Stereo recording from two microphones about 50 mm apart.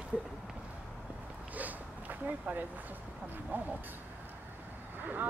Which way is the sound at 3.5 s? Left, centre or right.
Right.